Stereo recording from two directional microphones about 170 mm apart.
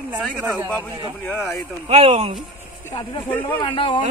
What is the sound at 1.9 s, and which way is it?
Speech, 40° right (ahead or behind).